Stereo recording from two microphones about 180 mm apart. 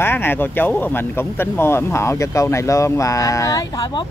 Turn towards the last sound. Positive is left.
turn(degrees=25)  # may be behind; listen again after turning